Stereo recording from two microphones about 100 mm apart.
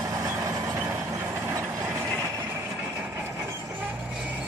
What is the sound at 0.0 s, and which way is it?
Vehicle, 35° right (ahead or behind).